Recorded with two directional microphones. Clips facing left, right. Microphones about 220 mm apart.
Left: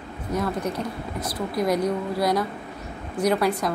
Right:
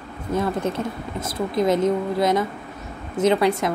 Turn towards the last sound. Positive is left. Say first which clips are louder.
# right 3 dB
turn(degrees=-25)  # may be behind; listen again after turning